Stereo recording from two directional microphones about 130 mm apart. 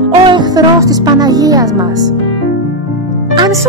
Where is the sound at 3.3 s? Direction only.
30° right (ahead or behind).